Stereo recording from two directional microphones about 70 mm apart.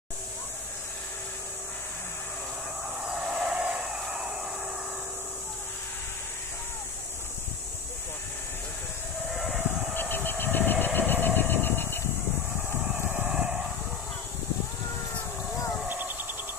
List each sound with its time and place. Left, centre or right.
3.0 s a sound: centre
9.3 s vehicle: centre
9.9 s vehicle: left
12.9 s vehicle: right
13.3 s vehicle: centre
15.9 s insect: right